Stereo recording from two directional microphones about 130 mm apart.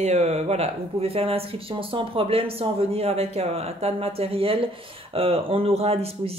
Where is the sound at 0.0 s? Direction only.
55° right (ahead or behind).